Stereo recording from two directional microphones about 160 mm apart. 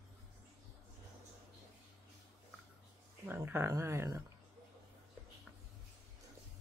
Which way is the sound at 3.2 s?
15° right (ahead or behind).